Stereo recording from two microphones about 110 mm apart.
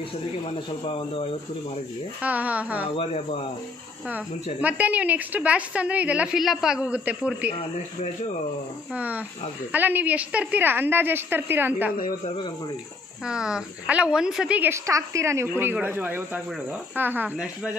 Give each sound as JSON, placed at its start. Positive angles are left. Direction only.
{"t": 0.5, "sound": "speech", "side_deg": 55}
{"t": 2.2, "sound": "a woman's voice", "side_deg": -15}
{"t": 3.0, "sound": "speech", "side_deg": 65}
{"t": 4.6, "sound": "a woman's voice", "side_deg": -15}
{"t": 8.9, "sound": "a woman's voice", "side_deg": -15}
{"t": 13.2, "sound": "a woman's voice", "side_deg": -5}
{"t": 14.6, "sound": "a woman's voice", "side_deg": -25}